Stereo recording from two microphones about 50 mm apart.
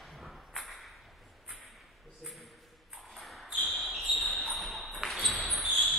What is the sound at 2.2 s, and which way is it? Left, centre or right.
Ping, centre.